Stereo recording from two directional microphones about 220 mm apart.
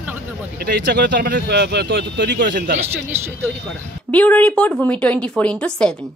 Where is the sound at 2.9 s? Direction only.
10° right (ahead or behind).